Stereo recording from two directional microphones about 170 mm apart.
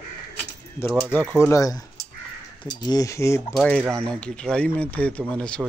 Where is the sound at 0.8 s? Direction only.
10° left (ahead or behind).